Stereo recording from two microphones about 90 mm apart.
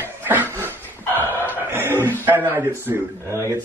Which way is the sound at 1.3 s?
20° right (ahead or behind).